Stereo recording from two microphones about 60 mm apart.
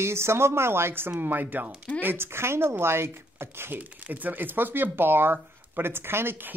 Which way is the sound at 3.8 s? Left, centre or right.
Right.